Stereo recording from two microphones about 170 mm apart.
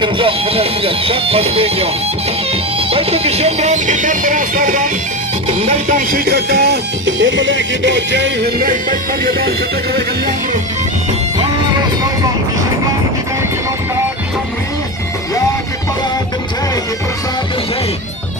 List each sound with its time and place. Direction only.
0.0 s speech: 30° right (ahead or behind); by 4.8 s 50° right (ahead or behind)
5.5 s speech: 40° right (ahead or behind); by 8.6 s 90° right
9.2 s music: 65° right (ahead or behind)